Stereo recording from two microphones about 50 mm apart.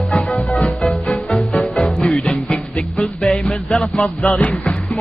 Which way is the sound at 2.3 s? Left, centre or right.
Left.